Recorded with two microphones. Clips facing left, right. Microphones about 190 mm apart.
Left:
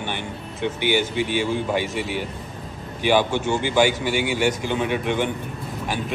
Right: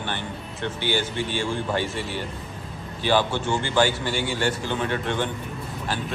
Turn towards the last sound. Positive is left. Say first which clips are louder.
# left 3 dB
turn(degrees=15)  # may be behind; listen again after turning